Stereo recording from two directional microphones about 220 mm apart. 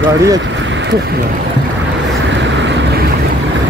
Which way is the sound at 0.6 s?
55° right (ahead or behind).